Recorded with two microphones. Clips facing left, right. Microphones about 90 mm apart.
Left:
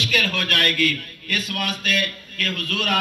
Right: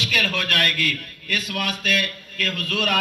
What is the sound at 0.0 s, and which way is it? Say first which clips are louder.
A man's voice: left 1 dB; centre (ahead or behind).